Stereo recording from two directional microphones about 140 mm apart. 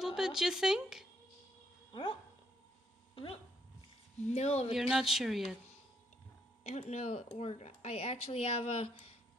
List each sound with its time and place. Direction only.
0.0 s speech: 5° right (ahead or behind)
1.9 s speech: 35° left (ahead or behind)
4.3 s speech: 50° left (ahead or behind)
4.7 s speech: 5° right (ahead or behind)
6.6 s speech: 50° left (ahead or behind)